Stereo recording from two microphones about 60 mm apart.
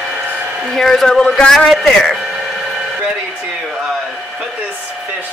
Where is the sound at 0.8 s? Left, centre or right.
Centre.